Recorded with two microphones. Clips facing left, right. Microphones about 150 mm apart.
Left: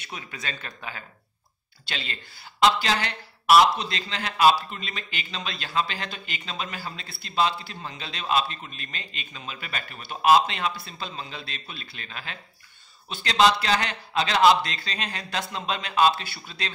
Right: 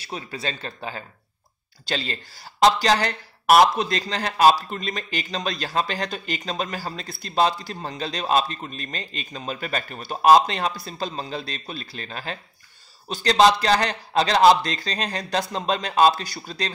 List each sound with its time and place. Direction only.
0.0 s speech: 35° right (ahead or behind)